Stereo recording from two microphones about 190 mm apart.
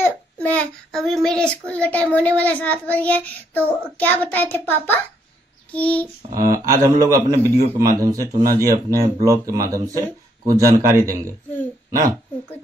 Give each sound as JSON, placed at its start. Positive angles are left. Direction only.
{"t": 0.0, "sound": "a child's voice", "side_deg": 10}
{"t": 6.3, "sound": "a man's voice", "side_deg": -15}